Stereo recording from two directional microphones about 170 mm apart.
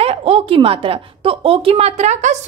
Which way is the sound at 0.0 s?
35° right (ahead or behind).